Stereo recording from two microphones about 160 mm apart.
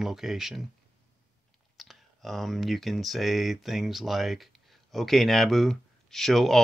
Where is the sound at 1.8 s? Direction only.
Centre (ahead or behind).